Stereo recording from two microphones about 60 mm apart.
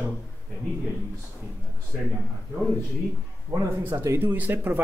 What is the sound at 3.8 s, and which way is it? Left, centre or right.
Speech, right.